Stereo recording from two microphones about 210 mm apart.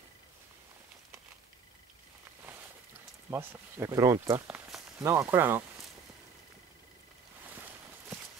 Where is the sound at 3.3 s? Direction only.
15° right (ahead or behind).